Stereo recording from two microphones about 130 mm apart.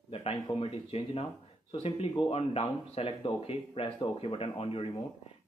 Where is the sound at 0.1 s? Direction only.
45° left (ahead or behind).